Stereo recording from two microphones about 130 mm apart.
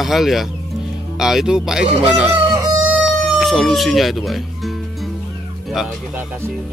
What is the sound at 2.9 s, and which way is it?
Music, centre (ahead or behind).